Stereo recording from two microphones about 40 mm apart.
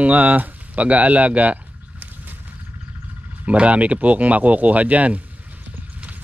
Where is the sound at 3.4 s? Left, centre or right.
Right.